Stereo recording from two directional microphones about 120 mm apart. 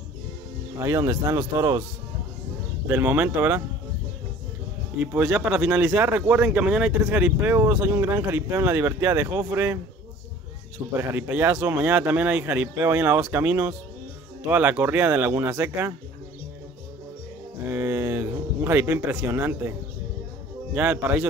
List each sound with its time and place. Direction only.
0.7 s speech: 20° right (ahead or behind)
2.9 s speech: 15° right (ahead or behind)
4.9 s speech: 10° right (ahead or behind)
11.0 s speech: 15° right (ahead or behind)
17.6 s speech: 20° right (ahead or behind)
20.7 s speech: 15° right (ahead or behind)